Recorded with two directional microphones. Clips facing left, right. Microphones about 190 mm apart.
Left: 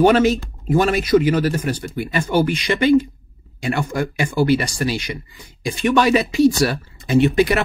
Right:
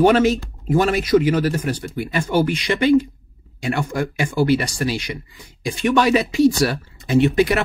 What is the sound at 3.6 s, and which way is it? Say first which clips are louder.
Speech: left 1 dB; 10° left (ahead or behind).